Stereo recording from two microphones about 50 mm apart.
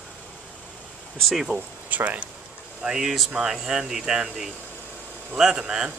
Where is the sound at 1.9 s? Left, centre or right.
Right.